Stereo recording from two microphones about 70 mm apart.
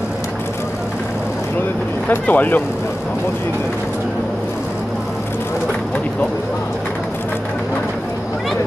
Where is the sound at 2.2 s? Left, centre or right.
Left.